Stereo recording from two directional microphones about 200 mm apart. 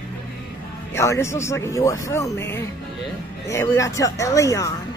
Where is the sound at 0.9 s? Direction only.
15° left (ahead or behind).